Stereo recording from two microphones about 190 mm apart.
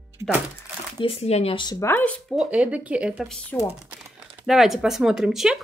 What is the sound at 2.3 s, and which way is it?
Speech, 5° right (ahead or behind).